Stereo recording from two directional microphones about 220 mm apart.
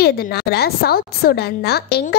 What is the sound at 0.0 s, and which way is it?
A woman's voice, 45° left (ahead or behind).